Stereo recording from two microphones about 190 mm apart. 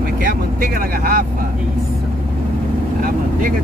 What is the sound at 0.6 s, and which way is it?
Speech, 50° right (ahead or behind).